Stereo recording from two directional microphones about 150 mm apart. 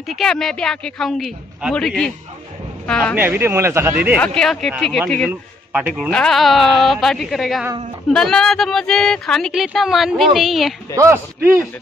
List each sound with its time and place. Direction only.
0.1 s speech: 5° left (ahead or behind)
3.2 s speech: 15° right (ahead or behind)
4.2 s speech: 5° left (ahead or behind)
5.3 s speech: 10° right (ahead or behind)
11.0 s a man's voice: 20° right (ahead or behind)